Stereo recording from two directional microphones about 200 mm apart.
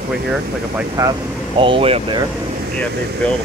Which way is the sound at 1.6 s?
25° right (ahead or behind).